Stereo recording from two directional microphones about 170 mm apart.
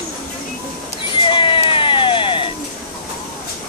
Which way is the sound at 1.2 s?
30° left (ahead or behind).